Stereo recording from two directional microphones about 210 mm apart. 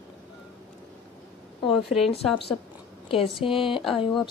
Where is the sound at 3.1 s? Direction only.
25° left (ahead or behind).